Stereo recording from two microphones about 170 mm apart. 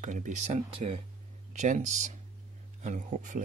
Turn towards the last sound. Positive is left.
turn(degrees=-50)  # may be behind; listen again after turning